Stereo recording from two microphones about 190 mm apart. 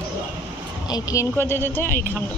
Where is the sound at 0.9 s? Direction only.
15° left (ahead or behind).